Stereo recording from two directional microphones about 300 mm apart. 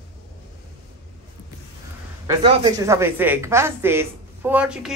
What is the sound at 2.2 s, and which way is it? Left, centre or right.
A woman's voice, centre.